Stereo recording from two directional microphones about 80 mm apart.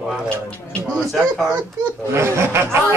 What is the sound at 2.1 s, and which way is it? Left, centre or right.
Speech, right.